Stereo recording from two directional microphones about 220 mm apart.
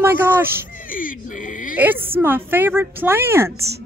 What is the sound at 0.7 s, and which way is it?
Speech, 40° left (ahead or behind).